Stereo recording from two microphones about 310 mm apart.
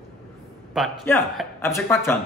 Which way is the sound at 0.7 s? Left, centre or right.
Centre.